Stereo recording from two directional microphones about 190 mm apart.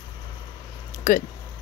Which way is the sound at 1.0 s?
45° left (ahead or behind).